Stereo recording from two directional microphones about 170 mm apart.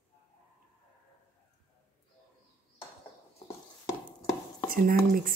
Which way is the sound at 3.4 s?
20° left (ahead or behind).